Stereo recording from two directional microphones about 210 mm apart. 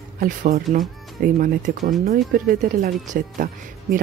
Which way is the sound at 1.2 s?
40° right (ahead or behind).